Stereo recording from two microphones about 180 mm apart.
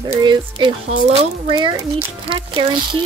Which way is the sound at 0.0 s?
25° right (ahead or behind).